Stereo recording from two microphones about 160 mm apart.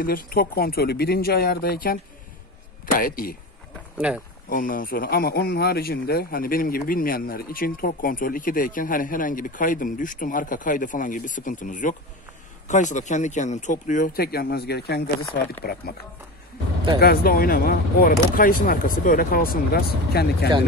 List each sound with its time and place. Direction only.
0.0 s speech: 65° left (ahead or behind)
4.5 s speech: 60° left (ahead or behind); by 15.0 s 90° left
15.6 s speech: 70° left (ahead or behind)
17.0 s speech: 70° left (ahead or behind)